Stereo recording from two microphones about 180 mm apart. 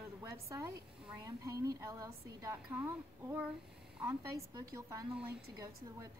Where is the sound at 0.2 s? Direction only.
15° right (ahead or behind).